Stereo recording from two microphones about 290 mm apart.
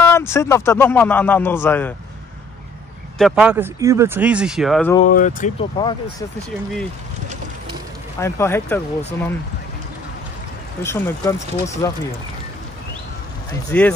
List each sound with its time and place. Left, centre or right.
0.0 s speech: centre
3.2 s speech: centre
5.1 s speech: left
8.2 s speech: centre
10.8 s speech: centre
13.5 s speech: centre